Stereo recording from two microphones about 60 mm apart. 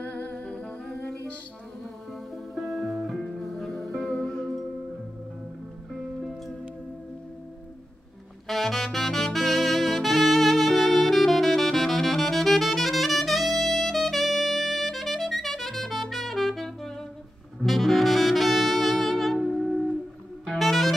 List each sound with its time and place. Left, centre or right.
0.0 s humming: left
2.5 s music: centre
8.5 s saxophone: centre
20.4 s music: centre